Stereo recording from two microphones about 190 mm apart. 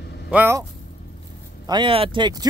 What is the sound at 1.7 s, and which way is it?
Speech, 25° right (ahead or behind).